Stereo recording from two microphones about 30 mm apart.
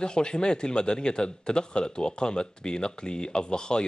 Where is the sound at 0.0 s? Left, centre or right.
Left.